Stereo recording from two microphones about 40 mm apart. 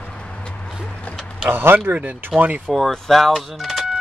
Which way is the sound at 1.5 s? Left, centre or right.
Right.